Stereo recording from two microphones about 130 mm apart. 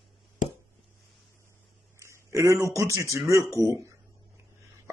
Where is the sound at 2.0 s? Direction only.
20° right (ahead or behind).